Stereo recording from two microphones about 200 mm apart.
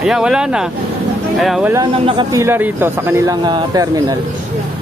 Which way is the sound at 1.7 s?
25° right (ahead or behind).